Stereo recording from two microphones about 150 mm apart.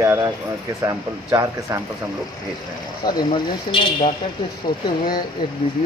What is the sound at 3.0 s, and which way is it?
Speech, 35° left (ahead or behind).